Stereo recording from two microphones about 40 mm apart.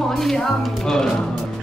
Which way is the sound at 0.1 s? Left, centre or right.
Centre.